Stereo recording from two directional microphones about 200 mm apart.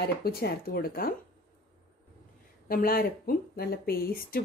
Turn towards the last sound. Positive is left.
turn(degrees=50)  # may be behind; listen again after turning